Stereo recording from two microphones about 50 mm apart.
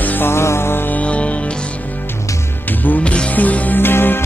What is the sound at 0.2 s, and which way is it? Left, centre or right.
Music, left.